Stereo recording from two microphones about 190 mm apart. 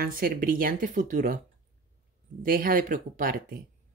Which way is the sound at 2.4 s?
50° right (ahead or behind).